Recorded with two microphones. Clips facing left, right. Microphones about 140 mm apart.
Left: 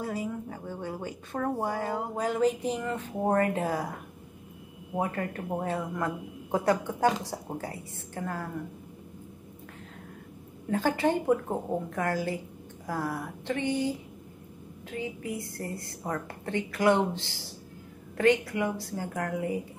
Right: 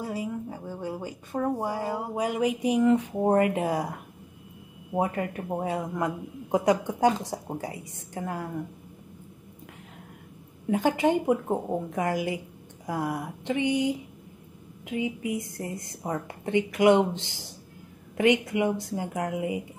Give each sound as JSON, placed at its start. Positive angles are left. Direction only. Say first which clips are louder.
{"t": 0.0, "sound": "a woman's voice", "louder": "right 1 dB", "side_deg": -5}
{"t": 4.9, "sound": "a woman's voice", "louder": "right 3 dB", "side_deg": -15}
{"t": 10.7, "sound": "a woman's voice", "louder": "right 3 dB", "side_deg": -15}